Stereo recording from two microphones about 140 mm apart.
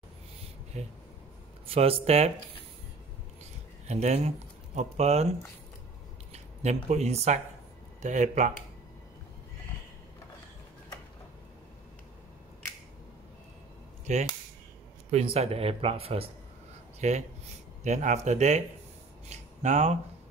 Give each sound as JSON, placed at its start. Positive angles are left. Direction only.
{"t": 0.7, "sound": "speech", "side_deg": -50}
{"t": 3.8, "sound": "speech", "side_deg": -50}
{"t": 6.3, "sound": "speech", "side_deg": -50}
{"t": 14.1, "sound": "speech", "side_deg": -55}
{"t": 17.0, "sound": "speech", "side_deg": -55}
{"t": 19.2, "sound": "a sound", "side_deg": -55}